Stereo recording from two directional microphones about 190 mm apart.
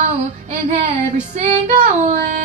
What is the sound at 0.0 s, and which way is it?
Female singing, 40° right (ahead or behind).